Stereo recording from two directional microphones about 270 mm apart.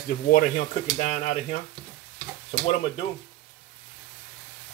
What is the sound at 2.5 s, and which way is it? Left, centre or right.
Speech, left.